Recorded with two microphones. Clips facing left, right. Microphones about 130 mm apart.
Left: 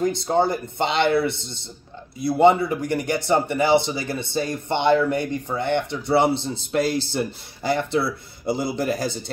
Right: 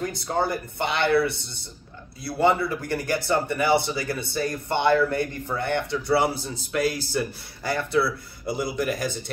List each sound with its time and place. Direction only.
0.0 s a man's voice: 20° left (ahead or behind)